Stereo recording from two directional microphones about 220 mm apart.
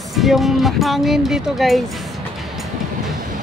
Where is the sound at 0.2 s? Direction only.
Centre (ahead or behind).